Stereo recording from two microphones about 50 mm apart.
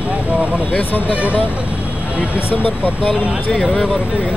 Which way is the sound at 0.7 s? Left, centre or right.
Left.